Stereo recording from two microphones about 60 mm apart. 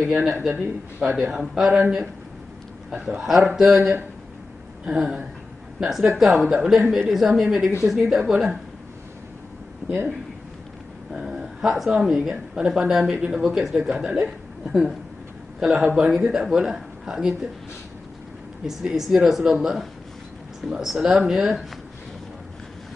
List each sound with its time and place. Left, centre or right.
0.0 s speech: centre
3.2 s a woman's voice: centre
11.1 s speech: centre
15.6 s speech: centre
18.7 s speech: centre